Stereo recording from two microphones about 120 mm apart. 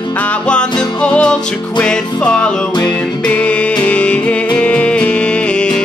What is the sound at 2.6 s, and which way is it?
Music, 40° left (ahead or behind).